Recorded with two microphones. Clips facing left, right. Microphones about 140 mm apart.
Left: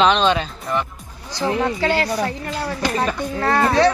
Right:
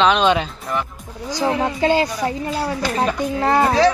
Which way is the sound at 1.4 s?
15° right (ahead or behind).